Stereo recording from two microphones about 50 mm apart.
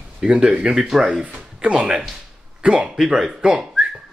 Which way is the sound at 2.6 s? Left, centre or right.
Right.